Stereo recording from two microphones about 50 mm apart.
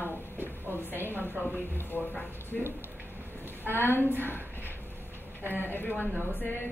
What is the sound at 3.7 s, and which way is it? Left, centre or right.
Speech, left.